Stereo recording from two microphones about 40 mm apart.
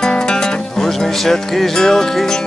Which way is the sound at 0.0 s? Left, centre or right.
Centre.